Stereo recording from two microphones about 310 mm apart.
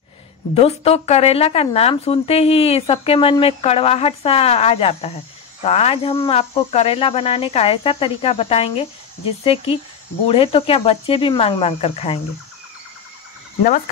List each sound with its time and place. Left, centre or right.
0.6 s speech: centre